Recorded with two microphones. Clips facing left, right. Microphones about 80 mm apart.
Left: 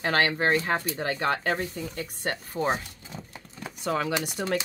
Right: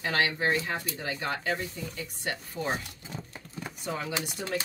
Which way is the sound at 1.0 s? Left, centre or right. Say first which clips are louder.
Left 6 dB; left.